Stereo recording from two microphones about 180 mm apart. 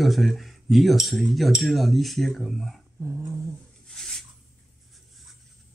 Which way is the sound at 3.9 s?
5° left (ahead or behind).